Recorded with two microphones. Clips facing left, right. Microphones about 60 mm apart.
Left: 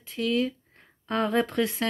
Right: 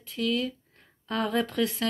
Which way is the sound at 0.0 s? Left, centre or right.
Centre.